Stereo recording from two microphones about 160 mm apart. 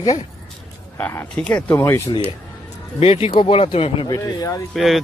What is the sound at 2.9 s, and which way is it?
Speech, 35° left (ahead or behind).